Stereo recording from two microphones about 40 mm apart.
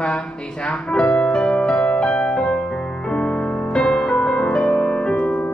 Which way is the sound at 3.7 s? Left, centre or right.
Left.